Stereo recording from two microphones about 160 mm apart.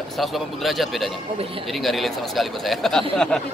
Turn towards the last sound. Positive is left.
turn(degrees=5)  # may be behind; listen again after turning